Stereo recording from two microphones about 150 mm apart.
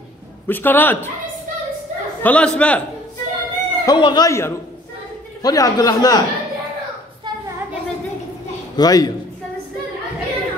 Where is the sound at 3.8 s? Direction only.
30° left (ahead or behind).